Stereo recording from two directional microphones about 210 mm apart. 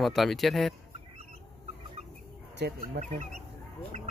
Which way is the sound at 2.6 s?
50° right (ahead or behind).